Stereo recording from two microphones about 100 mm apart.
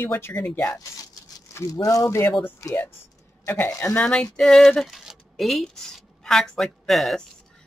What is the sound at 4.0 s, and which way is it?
Speech, 10° left (ahead or behind).